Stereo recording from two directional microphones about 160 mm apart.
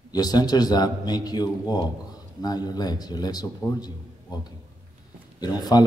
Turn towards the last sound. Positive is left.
turn(degrees=25)  # may be behind; listen again after turning